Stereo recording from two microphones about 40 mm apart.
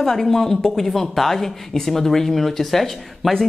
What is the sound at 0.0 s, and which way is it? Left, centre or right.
Speech, centre.